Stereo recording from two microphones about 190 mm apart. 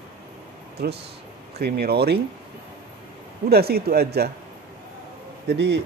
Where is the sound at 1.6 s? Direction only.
55° right (ahead or behind).